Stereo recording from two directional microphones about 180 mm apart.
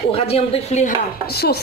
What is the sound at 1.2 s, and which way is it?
Speech, 60° left (ahead or behind).